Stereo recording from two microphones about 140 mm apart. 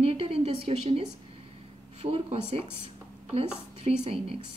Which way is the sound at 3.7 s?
45° right (ahead or behind).